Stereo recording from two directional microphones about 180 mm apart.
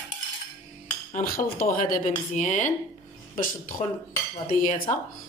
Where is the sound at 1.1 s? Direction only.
50° left (ahead or behind).